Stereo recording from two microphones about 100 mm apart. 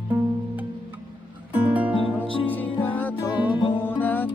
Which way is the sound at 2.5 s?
15° left (ahead or behind).